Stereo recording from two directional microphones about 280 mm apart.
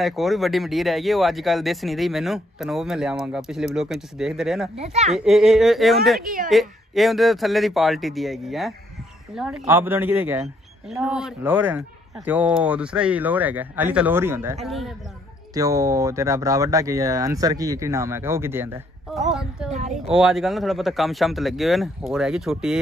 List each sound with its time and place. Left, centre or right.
0.0 s speech: centre
4.7 s a child's voice: right
5.1 s speech: centre
6.2 s a child's voice: right
6.5 s speech: centre
15.5 s speech: centre